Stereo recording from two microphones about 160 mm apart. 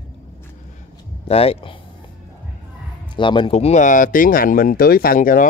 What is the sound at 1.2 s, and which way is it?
Speech, 40° left (ahead or behind).